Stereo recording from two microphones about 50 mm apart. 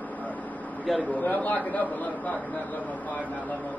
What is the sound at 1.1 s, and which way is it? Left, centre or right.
A man's voice, left.